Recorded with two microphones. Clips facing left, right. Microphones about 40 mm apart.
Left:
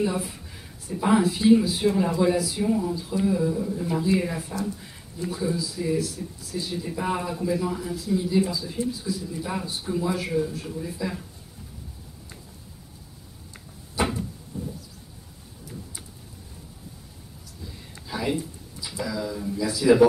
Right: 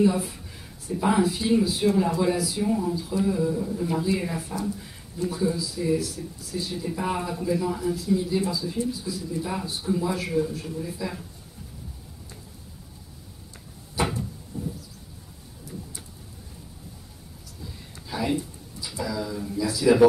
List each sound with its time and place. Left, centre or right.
0.0 s speech: centre
18.0 s a sound: centre
19.0 s speech: centre